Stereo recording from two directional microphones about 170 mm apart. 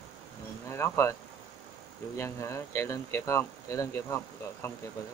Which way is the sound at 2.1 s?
15° left (ahead or behind).